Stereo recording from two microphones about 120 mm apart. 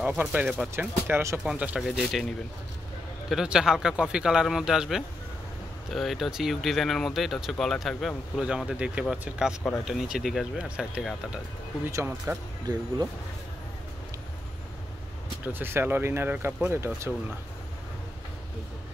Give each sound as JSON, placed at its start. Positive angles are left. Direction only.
{"t": 0.2, "sound": "speech", "side_deg": -10}
{"t": 0.7, "sound": "speech", "side_deg": -20}
{"t": 1.4, "sound": "speech", "side_deg": -5}
{"t": 3.3, "sound": "speech", "side_deg": -5}
{"t": 11.8, "sound": "speech", "side_deg": -20}
{"t": 15.4, "sound": "speech", "side_deg": -20}